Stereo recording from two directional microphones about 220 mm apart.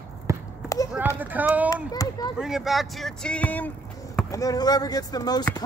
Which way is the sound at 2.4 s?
Centre (ahead or behind).